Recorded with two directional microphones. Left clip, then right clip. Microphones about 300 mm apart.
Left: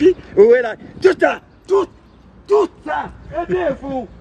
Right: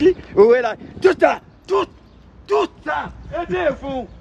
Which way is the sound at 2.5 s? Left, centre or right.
Centre.